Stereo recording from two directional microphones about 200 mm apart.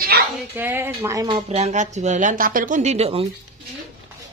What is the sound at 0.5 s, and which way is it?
Speech, 10° right (ahead or behind).